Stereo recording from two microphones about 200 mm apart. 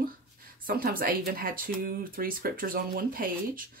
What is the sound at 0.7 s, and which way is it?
Speech, 45° right (ahead or behind).